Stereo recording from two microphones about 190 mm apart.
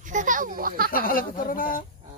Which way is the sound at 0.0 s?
40° right (ahead or behind).